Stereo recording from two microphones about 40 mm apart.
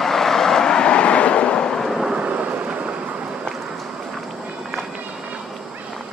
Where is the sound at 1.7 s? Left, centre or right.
Centre.